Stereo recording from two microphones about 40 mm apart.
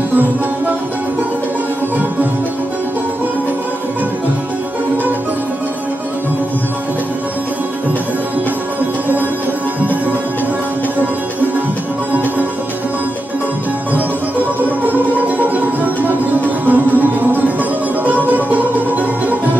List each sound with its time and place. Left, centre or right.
14.9 s music: right